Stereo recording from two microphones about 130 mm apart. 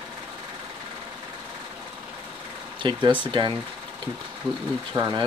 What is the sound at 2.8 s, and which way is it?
Speech, 35° right (ahead or behind).